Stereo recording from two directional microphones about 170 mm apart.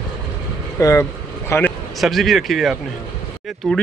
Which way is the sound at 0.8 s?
20° left (ahead or behind).